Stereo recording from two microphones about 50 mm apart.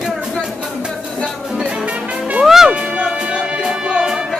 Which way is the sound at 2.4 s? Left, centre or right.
Centre.